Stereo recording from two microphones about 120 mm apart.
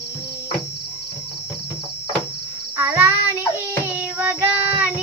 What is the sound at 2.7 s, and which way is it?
Child singing, 20° right (ahead or behind).